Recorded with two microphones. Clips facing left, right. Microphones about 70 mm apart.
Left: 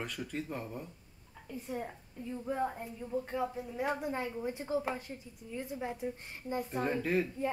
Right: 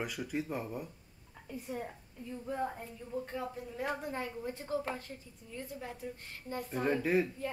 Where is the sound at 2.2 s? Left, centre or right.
Centre.